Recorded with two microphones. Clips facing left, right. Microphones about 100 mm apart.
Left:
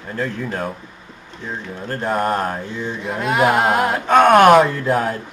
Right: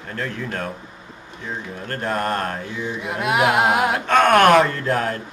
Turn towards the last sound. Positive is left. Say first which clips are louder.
# left 3 dB
turn(degrees=5)  # may be behind; listen again after turning